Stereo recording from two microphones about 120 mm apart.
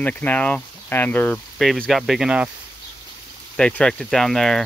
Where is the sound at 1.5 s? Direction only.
5° left (ahead or behind).